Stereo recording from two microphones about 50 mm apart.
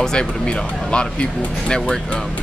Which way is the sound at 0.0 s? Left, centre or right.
Centre.